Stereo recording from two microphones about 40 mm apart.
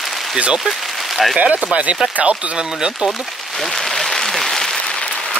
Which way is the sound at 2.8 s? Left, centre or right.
Centre.